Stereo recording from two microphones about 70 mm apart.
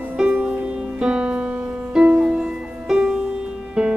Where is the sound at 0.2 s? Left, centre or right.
Centre.